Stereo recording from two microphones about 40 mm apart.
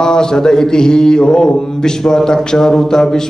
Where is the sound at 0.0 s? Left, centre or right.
Centre.